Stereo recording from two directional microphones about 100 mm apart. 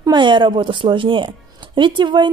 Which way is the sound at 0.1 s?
50° right (ahead or behind).